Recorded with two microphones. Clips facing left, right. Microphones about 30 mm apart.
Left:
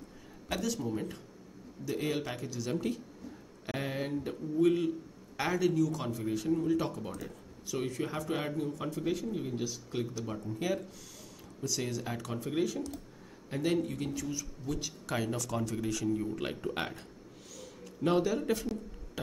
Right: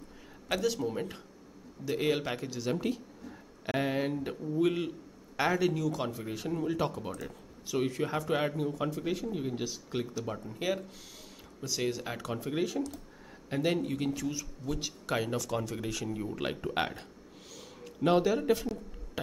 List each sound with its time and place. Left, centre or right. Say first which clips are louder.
0.5 s speech: right 3 dB; centre
11.6 s speech: right 2 dB; right
17.6 s a sound: right 3 dB; centre